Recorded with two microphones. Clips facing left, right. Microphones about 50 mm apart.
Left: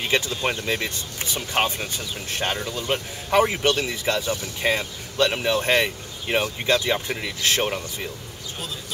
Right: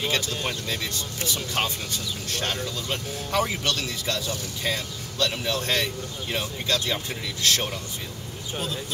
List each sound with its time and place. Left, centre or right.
0.1 s speech: left